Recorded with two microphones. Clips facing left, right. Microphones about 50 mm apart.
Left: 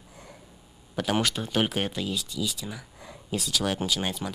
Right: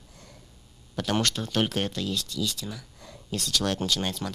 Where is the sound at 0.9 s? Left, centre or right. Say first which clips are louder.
Left 1 dB; centre.